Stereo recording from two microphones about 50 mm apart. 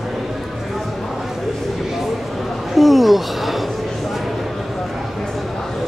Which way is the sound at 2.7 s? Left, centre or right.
Centre.